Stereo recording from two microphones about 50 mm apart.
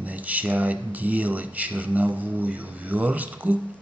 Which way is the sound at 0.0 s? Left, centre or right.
Right.